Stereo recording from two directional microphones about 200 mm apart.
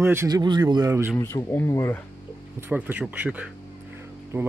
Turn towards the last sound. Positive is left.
turn(degrees=-10)  # may be behind; listen again after turning